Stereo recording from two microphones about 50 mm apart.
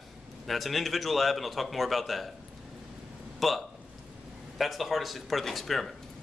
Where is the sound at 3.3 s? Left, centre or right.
Centre.